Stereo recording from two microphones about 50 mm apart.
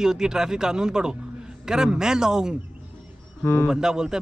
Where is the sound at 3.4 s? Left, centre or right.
Left.